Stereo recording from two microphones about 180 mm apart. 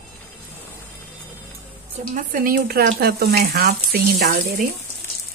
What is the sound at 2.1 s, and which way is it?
Speech, 45° right (ahead or behind).